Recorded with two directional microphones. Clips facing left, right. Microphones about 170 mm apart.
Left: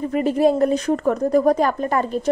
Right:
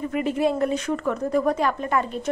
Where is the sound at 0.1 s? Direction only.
40° left (ahead or behind).